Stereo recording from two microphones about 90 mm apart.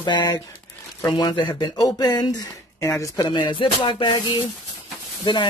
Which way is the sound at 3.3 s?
60° left (ahead or behind).